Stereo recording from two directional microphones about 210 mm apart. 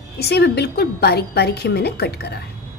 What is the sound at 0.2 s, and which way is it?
A woman's voice, 50° left (ahead or behind).